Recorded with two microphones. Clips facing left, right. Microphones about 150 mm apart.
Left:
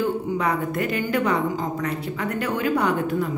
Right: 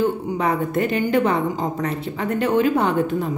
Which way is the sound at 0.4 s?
25° right (ahead or behind).